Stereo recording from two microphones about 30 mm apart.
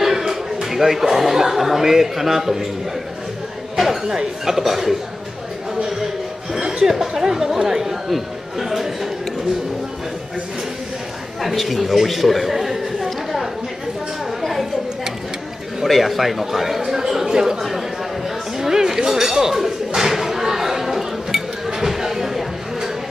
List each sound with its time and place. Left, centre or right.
0.0 s speech: centre
3.7 s a sound: centre
4.1 s speech: right
4.6 s speech: centre
5.8 s a sound: centre
6.9 s speech: centre
8.1 s speech: centre
11.4 s a man's voice: centre
14.4 s a sound: centre
15.8 s speech: centre
17.6 s speech: centre
18.6 s a sound: centre